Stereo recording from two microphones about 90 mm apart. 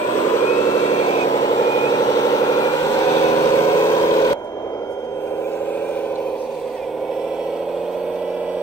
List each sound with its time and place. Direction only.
0.3 s vehicle: 40° left (ahead or behind)
0.9 s vehicle: 65° left (ahead or behind); by 4.3 s 45° left (ahead or behind)